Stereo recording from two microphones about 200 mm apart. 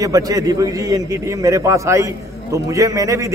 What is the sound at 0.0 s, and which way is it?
A man's voice, 20° right (ahead or behind).